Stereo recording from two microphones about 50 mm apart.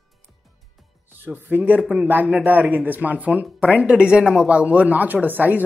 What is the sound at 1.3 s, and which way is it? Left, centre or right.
Speech, right.